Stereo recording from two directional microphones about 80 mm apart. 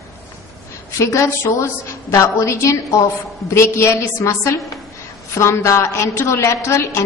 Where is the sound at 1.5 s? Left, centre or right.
Left.